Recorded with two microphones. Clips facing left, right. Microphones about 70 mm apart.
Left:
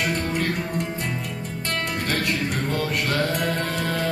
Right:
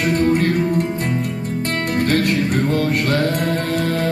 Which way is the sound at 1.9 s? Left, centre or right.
Right.